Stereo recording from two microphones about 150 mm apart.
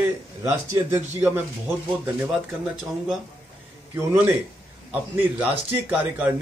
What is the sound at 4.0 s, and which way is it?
A man's voice, 20° right (ahead or behind).